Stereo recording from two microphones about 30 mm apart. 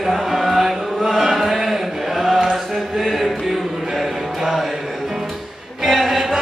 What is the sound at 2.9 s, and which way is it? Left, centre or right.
Music, centre.